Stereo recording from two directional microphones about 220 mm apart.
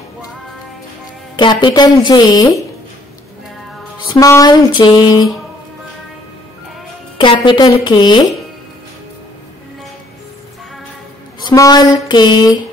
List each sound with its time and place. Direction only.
1.4 s a woman's voice: 20° left (ahead or behind)
4.2 s a woman's voice: 15° left (ahead or behind)
7.2 s a woman's voice: 20° left (ahead or behind)
11.4 s a sound: 15° left (ahead or behind)